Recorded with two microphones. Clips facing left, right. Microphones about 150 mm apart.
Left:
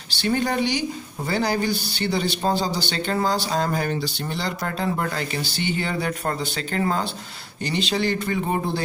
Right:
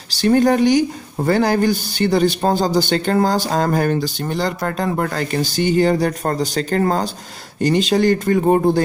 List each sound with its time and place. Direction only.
0.1 s speech: 45° right (ahead or behind)